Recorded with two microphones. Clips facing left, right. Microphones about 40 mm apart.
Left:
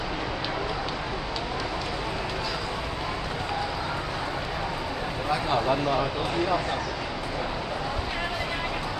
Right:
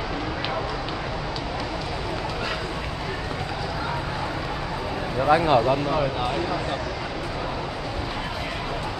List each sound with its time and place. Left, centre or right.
5.2 s speech: right
5.6 s speech: centre